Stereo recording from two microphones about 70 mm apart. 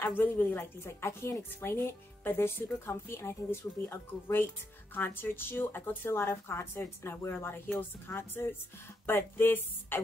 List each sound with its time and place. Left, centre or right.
0.0 s speech: left